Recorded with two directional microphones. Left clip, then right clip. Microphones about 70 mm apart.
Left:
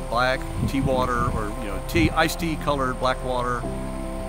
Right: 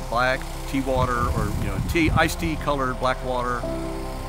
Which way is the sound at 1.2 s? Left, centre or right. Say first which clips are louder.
Even; right.